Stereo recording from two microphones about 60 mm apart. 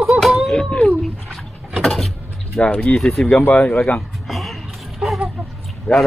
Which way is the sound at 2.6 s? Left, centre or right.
Centre.